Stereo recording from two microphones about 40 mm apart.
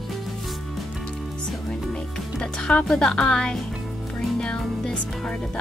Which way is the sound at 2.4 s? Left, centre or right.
Left.